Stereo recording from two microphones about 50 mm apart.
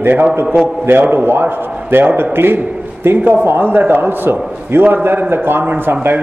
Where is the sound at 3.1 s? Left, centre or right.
Right.